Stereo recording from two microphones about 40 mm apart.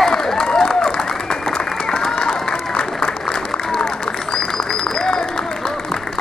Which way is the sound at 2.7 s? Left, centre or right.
Centre.